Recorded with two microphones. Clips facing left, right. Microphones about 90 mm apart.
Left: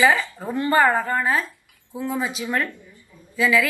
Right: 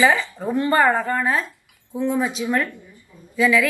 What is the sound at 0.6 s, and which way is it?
A woman's voice, centre (ahead or behind).